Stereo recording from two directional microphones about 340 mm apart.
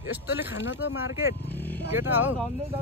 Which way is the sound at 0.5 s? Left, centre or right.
Left.